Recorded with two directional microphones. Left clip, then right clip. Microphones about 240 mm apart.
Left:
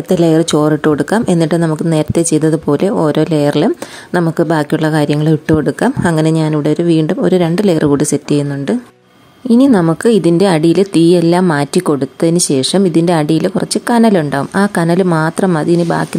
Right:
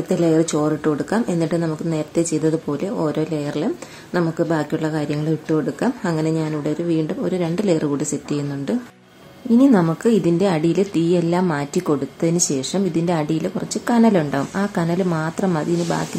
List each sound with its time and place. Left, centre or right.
0.1 s speech: left